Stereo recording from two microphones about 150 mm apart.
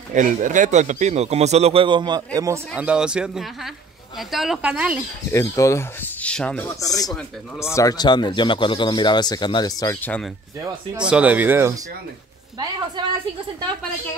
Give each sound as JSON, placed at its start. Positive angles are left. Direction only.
{"t": 0.1, "sound": "a man's voice", "side_deg": -60}
{"t": 2.7, "sound": "speech", "side_deg": -5}
{"t": 5.3, "sound": "speech", "side_deg": 20}
{"t": 6.2, "sound": "speech", "side_deg": 5}
{"t": 6.6, "sound": "speech", "side_deg": 20}
{"t": 11.1, "sound": "speech", "side_deg": -10}